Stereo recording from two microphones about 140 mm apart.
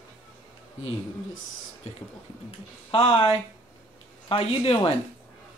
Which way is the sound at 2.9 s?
35° left (ahead or behind).